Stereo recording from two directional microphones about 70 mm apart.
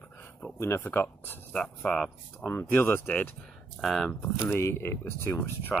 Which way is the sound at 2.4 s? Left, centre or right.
Left.